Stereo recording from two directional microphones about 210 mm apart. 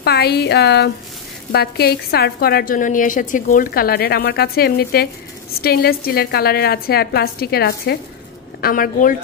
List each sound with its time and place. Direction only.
0.0 s a woman's voice: 50° left (ahead or behind)